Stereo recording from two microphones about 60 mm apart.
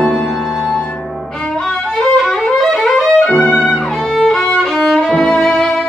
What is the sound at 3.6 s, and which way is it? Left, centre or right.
Music, centre.